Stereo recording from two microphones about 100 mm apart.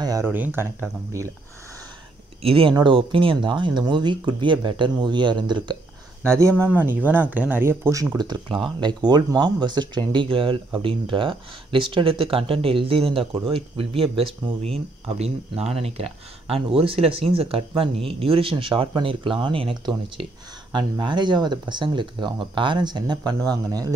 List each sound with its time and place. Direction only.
0.2 s speech: 20° right (ahead or behind)
1.1 s speech: 30° right (ahead or behind)
2.4 s speech: 65° right (ahead or behind)
6.6 s speech: 20° right (ahead or behind)
8.2 s speech: 50° right (ahead or behind)
10.2 s speech: 60° right (ahead or behind); by 23.9 s 40° right (ahead or behind)